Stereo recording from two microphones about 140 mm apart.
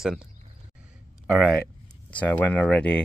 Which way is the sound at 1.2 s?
Centre (ahead or behind).